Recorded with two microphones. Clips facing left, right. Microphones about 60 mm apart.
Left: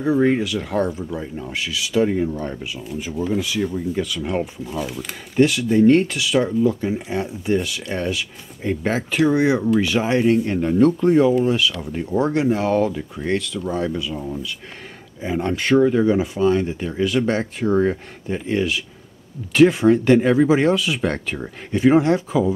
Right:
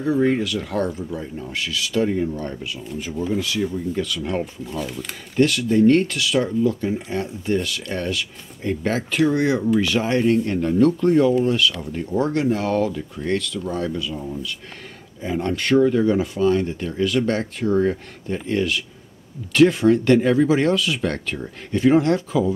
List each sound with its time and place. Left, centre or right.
0.0 s speech: centre
3.1 s speech: centre
3.3 s speech: centre
4.6 s speech: centre